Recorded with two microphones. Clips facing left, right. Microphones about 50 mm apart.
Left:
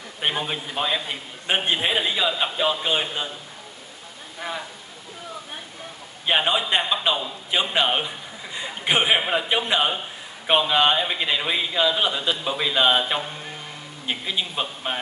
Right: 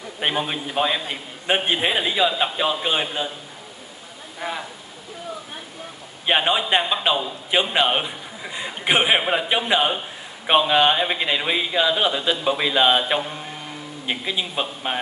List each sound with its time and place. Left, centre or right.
0.2 s a man's voice: centre
6.2 s a man's voice: centre